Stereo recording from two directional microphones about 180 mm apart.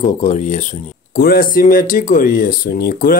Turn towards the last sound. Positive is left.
turn(degrees=55)  # may be behind; listen again after turning